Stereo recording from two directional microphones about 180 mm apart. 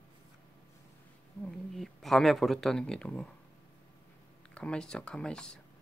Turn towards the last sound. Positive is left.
turn(degrees=5)  # may be behind; listen again after turning